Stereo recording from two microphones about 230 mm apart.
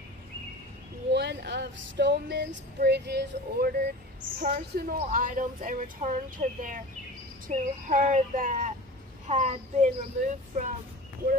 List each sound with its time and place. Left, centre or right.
1.1 s speech: right